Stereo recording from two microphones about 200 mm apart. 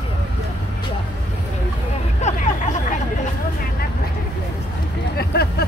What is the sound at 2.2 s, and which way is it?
Hubbub, 35° left (ahead or behind).